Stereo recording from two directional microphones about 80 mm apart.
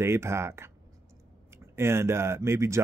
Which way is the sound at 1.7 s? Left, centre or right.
Right.